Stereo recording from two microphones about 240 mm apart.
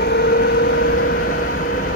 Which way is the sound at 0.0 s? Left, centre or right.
Left.